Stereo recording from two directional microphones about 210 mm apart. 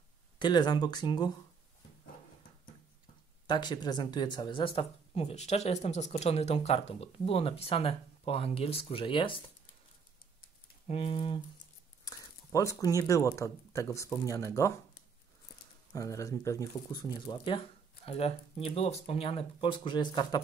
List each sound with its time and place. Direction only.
0.4 s speech: 20° left (ahead or behind)
3.4 s speech: 20° left (ahead or behind)
10.9 s speech: 25° left (ahead or behind)
15.9 s speech: 15° left (ahead or behind)